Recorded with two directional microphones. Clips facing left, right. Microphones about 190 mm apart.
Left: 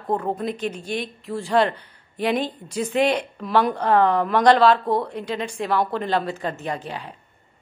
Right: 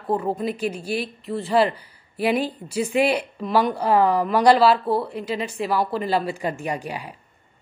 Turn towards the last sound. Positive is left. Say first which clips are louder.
# right 1 dB
turn(degrees=-10)  # may be behind; listen again after turning